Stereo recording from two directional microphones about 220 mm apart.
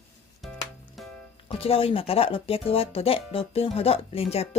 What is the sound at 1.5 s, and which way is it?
Speech, 25° left (ahead or behind).